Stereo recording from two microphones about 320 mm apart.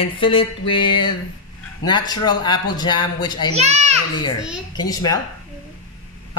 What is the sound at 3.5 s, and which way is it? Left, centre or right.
Speech, centre.